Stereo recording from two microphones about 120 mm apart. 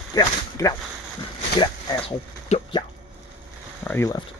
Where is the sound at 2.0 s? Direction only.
50° left (ahead or behind).